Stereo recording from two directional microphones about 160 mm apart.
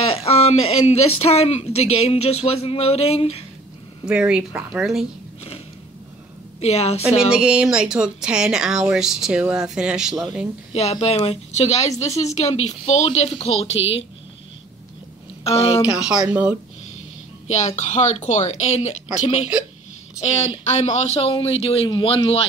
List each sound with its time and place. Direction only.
0.0 s speech: 40° left (ahead or behind)
4.0 s speech: 5° right (ahead or behind)
6.6 s speech: 40° left (ahead or behind)
7.2 s speech: 5° right (ahead or behind)
10.7 s speech: 40° left (ahead or behind)
15.4 s speech: 35° left (ahead or behind)
15.9 s speech: 5° right (ahead or behind)
17.5 s a woman's voice: 45° left (ahead or behind)